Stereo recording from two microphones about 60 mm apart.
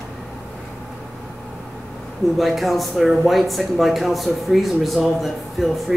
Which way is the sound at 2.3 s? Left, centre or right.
Centre.